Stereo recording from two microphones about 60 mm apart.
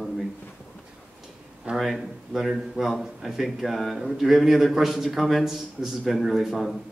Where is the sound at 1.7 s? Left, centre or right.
Centre.